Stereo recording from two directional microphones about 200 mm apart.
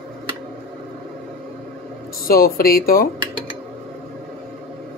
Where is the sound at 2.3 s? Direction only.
50° left (ahead or behind).